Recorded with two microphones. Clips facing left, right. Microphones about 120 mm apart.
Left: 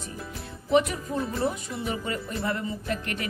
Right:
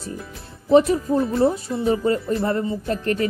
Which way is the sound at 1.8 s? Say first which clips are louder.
Right 11 dB; 35° right (ahead or behind).